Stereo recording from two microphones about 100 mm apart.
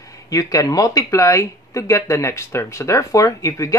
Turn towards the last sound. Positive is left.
turn(degrees=35)  # may be behind; listen again after turning